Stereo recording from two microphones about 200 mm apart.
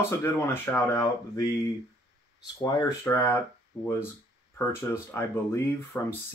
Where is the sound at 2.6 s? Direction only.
15° left (ahead or behind).